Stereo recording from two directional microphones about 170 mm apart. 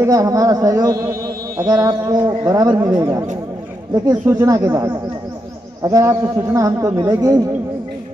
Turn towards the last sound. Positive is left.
turn(degrees=-15)  # may be behind; listen again after turning